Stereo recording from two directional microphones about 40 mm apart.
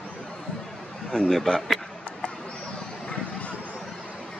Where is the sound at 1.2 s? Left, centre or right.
Centre.